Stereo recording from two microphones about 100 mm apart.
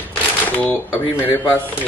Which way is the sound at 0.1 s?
15° left (ahead or behind).